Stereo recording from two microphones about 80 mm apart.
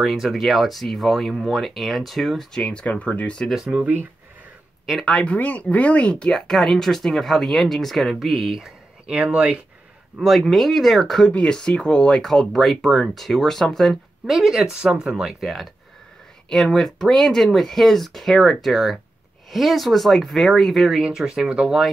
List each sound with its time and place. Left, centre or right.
0.0 s speech: centre
3.4 s speech: centre
3.7 s speech: centre
5.0 s speech: centre
10.2 s speech: centre